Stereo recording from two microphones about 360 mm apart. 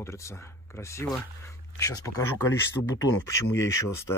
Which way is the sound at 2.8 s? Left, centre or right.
Left.